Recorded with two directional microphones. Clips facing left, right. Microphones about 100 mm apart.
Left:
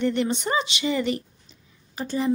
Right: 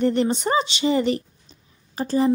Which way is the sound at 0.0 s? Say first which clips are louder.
Right 3 dB; 35° right (ahead or behind).